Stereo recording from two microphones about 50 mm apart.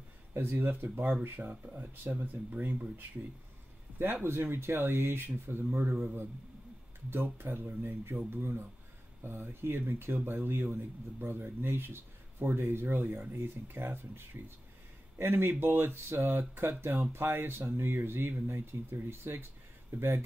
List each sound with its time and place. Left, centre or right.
0.3 s a man's voice: right
4.0 s a man's voice: right
12.9 s a man's voice: right